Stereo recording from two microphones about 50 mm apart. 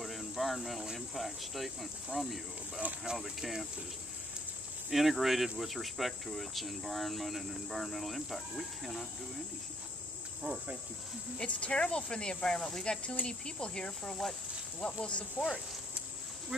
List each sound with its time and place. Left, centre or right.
0.0 s a sound: centre
0.9 s speech: centre
4.9 s speech: centre
10.4 s cricket: right
11.3 s speech: left
14.8 s speech: left